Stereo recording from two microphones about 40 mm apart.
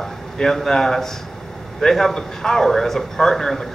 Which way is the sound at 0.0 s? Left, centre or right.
Centre.